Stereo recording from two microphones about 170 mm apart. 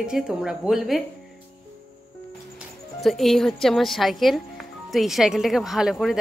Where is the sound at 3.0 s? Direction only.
Centre (ahead or behind).